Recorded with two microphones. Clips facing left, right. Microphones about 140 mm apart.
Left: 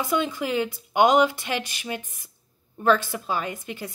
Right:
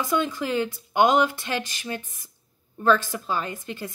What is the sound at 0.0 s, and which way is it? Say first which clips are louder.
A woman's voice: even; 15° left (ahead or behind).